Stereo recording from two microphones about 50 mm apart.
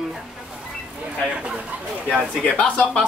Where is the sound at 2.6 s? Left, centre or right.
Left.